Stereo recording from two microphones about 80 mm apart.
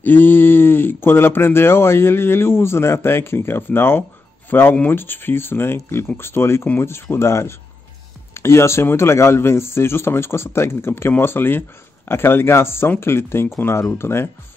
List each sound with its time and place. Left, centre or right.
0.0 s speech: left